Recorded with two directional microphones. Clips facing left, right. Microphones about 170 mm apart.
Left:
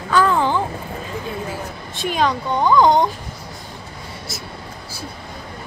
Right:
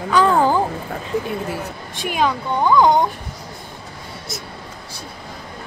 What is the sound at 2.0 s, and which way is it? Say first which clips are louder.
Speech: even; 10° right (ahead or behind).